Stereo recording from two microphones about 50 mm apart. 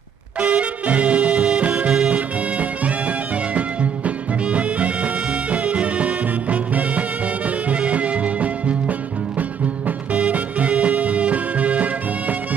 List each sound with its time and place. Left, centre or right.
0.4 s music: right
4.5 s music: right